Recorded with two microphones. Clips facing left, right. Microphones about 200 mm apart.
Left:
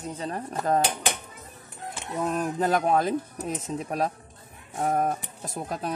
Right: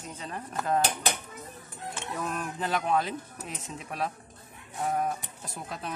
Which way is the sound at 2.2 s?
35° left (ahead or behind).